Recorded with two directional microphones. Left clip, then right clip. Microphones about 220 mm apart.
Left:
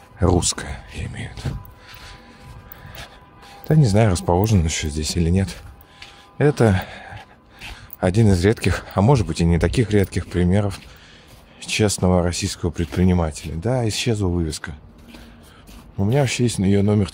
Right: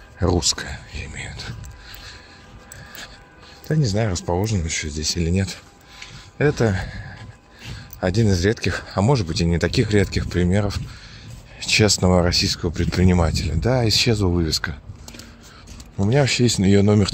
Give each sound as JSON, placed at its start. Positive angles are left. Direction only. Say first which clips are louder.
{"t": 0.2, "sound": "speech", "louder": "left 1 dB", "side_deg": 20}
{"t": 3.6, "sound": "speech", "louder": "left 5 dB", "side_deg": 20}
{"t": 16.0, "sound": "speech", "louder": "right 2 dB", "side_deg": 5}